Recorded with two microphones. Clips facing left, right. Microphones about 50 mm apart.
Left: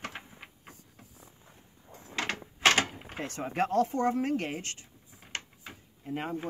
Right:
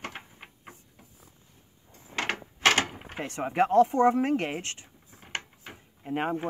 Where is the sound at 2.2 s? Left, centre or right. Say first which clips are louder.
Right 3 dB; centre.